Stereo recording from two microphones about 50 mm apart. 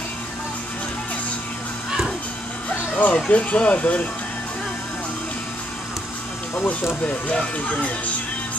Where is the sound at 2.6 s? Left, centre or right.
Left.